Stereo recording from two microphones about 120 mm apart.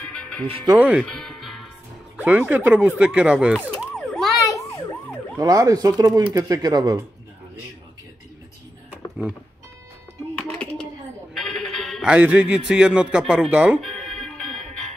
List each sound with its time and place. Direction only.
0.0 s music: 10° left (ahead or behind)
0.7 s a man's voice: 10° right (ahead or behind)
1.0 s music: 5° left (ahead or behind)
2.1 s a man's voice: 15° right (ahead or behind)
3.9 s emergency vehicle: centre (ahead or behind)
4.5 s ambulance: 25° left (ahead or behind)
5.4 s speech: 30° right (ahead or behind)
11.3 s a sound: centre (ahead or behind)
12.1 s a man's voice: 10° right (ahead or behind)
13.7 s music: centre (ahead or behind)